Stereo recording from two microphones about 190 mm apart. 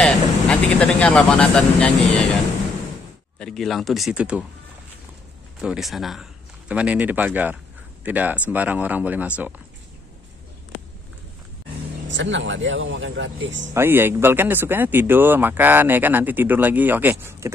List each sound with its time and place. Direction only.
0.0 s speech: 5° left (ahead or behind)
3.3 s speech: centre (ahead or behind)
5.6 s speech: 5° right (ahead or behind)
12.1 s speech: 75° right (ahead or behind)
13.7 s speech: 10° right (ahead or behind)